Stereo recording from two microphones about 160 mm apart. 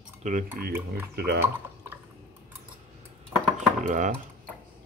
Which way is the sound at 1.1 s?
80° right.